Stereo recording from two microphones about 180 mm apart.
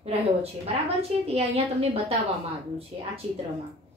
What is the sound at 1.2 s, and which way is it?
Speech, 35° right (ahead or behind).